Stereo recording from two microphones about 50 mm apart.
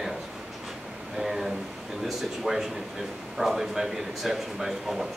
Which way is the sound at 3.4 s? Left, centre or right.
Centre.